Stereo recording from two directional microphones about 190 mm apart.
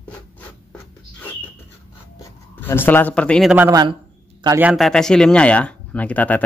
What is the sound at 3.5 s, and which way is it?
A man's voice, 10° right (ahead or behind).